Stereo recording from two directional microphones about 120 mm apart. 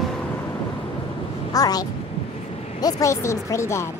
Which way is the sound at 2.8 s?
25° left (ahead or behind).